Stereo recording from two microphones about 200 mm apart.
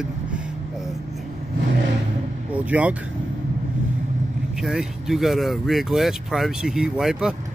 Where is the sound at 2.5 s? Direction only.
5° right (ahead or behind).